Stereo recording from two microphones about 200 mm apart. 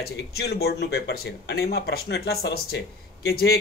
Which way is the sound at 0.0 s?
50° left (ahead or behind).